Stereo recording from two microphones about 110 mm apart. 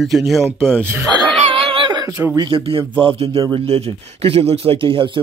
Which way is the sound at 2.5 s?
55° right (ahead or behind).